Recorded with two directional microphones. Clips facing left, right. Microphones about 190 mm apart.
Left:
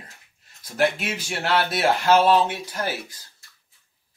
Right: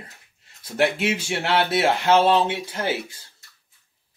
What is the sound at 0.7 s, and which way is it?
Speech, 25° right (ahead or behind).